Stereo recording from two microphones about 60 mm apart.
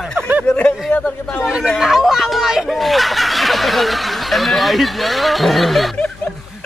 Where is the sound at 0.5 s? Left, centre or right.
Centre.